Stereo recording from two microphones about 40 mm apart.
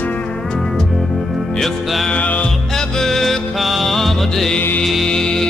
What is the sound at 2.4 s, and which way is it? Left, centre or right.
Music, centre.